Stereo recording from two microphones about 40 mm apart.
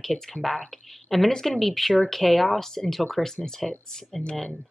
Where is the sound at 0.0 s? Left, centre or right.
Centre.